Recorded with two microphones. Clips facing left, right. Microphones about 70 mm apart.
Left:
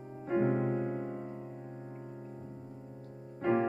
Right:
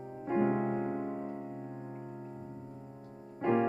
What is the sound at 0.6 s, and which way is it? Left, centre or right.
Music, centre.